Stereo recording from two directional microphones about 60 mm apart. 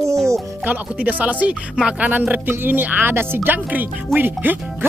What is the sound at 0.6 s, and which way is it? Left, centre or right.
Speech, right.